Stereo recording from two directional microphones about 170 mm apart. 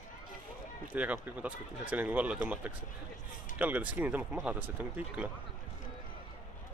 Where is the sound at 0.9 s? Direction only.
10° right (ahead or behind).